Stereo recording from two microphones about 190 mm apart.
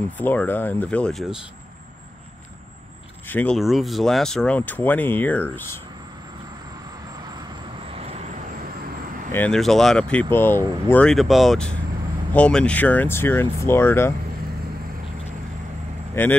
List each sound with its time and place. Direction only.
0.2 s speech: 10° left (ahead or behind)
3.3 s speech: 5° left (ahead or behind)
7.8 s vehicle: 30° right (ahead or behind)
9.3 s speech: 5° left (ahead or behind)
16.2 s speech: 10° left (ahead or behind)